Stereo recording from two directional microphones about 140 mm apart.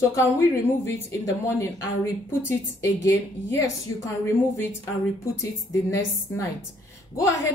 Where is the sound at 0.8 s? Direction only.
20° left (ahead or behind).